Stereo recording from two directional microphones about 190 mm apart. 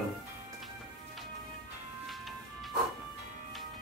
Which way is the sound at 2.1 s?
Centre (ahead or behind).